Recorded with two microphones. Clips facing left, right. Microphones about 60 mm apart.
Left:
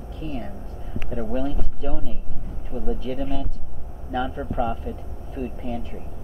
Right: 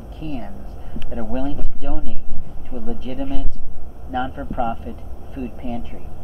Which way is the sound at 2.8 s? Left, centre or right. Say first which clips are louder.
Even; centre.